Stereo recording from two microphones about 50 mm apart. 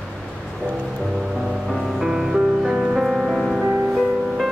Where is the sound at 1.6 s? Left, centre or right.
Centre.